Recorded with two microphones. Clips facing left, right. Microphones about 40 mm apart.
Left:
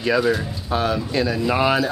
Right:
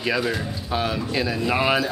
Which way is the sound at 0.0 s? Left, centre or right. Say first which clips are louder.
Left 4 dB; centre.